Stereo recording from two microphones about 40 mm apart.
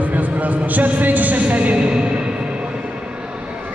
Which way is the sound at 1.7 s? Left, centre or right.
Right.